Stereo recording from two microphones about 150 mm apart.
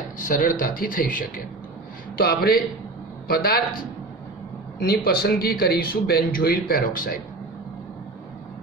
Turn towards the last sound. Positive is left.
turn(degrees=70)  # may be behind; listen again after turning